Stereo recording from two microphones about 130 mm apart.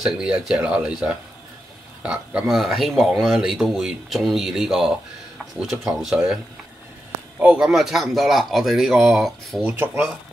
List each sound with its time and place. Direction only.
0.0 s speech: 5° right (ahead or behind)
9.8 s speech: 15° right (ahead or behind)